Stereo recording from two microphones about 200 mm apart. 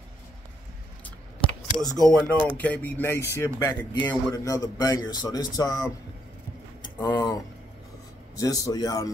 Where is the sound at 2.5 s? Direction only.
5° left (ahead or behind).